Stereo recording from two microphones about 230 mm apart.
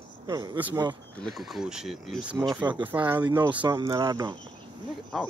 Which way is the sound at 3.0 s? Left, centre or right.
Centre.